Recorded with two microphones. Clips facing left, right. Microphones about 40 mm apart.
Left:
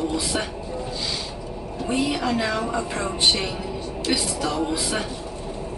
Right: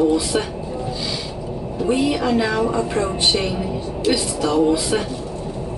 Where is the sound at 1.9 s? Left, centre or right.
Centre.